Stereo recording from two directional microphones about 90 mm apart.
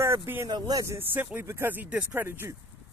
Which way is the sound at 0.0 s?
35° right (ahead or behind).